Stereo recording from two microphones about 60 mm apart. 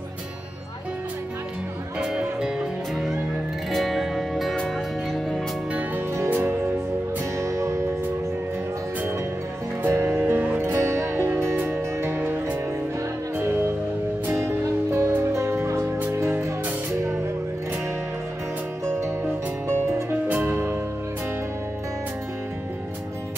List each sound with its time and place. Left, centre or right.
2.0 s music: centre
3.7 s music: centre
6.3 s music: right
7.3 s music: right
9.8 s music: right
10.6 s music: right
14.2 s music: right
16.1 s music: right
16.4 s music: right
19.7 s music: right